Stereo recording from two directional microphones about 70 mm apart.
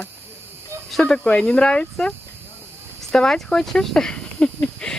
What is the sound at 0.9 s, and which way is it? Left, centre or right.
Speech, centre.